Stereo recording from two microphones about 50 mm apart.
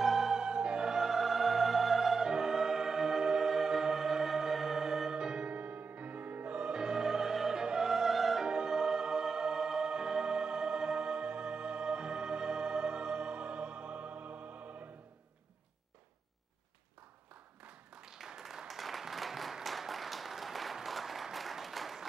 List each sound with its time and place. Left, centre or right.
0.0 s music: centre
8.5 s music: centre
17.6 s a sound: centre